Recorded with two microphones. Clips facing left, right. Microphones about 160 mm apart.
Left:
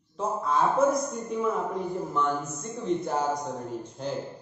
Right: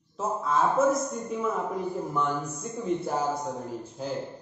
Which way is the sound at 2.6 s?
5° right (ahead or behind).